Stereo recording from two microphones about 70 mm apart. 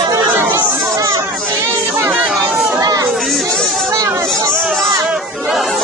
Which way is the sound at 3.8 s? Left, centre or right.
Right.